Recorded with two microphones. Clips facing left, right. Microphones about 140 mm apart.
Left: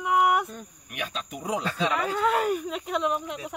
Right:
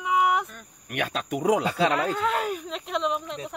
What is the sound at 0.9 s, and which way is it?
Speech, 65° right (ahead or behind).